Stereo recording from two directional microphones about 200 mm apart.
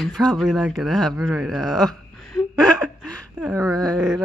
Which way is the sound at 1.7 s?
Centre (ahead or behind).